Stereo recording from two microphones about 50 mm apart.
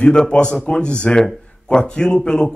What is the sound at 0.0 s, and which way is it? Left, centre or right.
A man's voice, centre.